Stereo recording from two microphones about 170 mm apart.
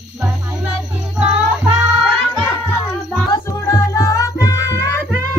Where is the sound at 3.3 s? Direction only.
20° left (ahead or behind).